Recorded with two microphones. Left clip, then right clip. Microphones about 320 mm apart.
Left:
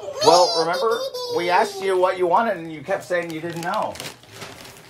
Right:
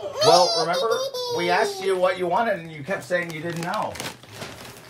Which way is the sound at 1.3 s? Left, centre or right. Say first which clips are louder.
Left 3 dB; centre.